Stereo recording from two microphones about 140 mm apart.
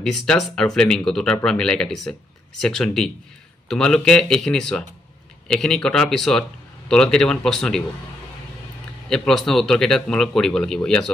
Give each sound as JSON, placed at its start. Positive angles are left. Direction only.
{"t": 0.0, "sound": "speech", "side_deg": 0}
{"t": 9.1, "sound": "speech", "side_deg": 0}